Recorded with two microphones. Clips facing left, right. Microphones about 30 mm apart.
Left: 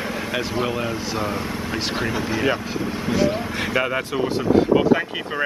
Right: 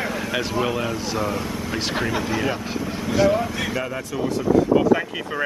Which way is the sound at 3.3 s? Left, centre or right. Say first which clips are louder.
Even; left.